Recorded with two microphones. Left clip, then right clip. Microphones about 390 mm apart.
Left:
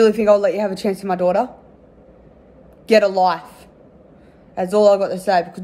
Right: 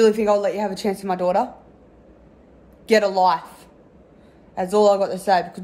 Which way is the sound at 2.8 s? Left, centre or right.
Centre.